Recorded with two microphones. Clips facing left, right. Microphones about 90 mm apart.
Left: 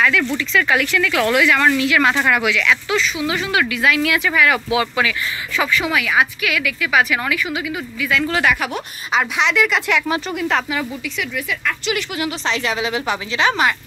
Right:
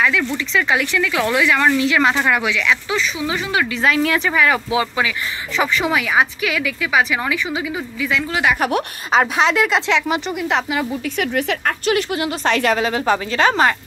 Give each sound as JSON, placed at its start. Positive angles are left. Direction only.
{"t": 0.4, "sound": "a woman's voice", "side_deg": -20}
{"t": 8.2, "sound": "a woman's voice", "side_deg": -15}
{"t": 8.5, "sound": "a woman's voice", "side_deg": -45}
{"t": 11.1, "sound": "speech", "side_deg": -55}
{"t": 12.4, "sound": "speech", "side_deg": -50}